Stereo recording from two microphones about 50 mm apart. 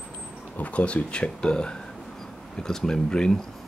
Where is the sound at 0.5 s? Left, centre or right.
Left.